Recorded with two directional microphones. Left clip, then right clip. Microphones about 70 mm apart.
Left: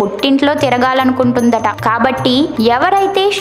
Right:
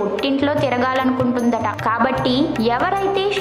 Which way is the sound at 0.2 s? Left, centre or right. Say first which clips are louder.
Left 7 dB; left.